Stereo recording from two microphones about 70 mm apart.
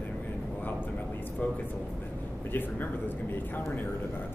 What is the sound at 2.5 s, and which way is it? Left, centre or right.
Speech, left.